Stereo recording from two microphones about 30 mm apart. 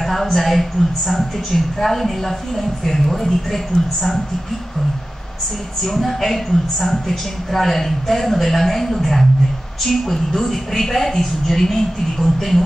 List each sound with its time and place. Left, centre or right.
0.0 s a woman's voice: centre
5.9 s a woman's voice: centre